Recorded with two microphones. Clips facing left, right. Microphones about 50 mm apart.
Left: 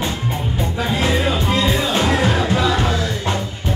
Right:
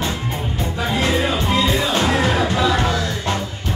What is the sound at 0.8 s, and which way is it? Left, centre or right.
Music, centre.